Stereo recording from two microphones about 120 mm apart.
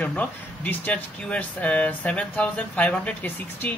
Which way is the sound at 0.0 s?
10° left (ahead or behind).